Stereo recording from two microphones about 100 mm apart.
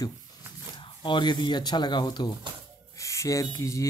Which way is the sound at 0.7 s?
50° left (ahead or behind).